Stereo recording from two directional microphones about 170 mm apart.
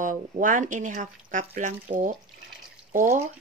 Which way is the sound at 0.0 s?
50° right (ahead or behind).